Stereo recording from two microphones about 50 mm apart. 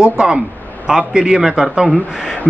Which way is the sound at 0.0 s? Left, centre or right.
Centre.